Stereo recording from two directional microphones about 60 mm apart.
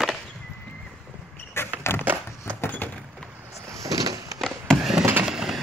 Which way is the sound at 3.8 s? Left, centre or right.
Right.